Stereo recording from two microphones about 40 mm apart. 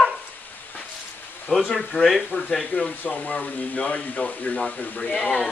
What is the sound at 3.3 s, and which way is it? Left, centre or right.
Speech, left.